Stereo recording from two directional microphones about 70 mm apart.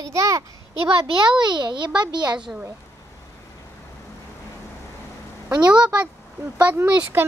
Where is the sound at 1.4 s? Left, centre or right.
Right.